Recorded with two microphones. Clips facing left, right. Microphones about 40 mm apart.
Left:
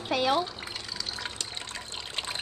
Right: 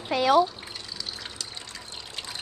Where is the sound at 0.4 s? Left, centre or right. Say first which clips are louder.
Right 8 dB; left.